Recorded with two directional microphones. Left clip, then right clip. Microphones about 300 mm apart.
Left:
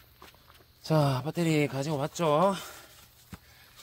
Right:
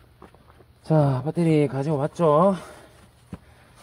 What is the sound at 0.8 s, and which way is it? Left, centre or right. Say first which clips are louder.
Speech: right 5 dB; centre.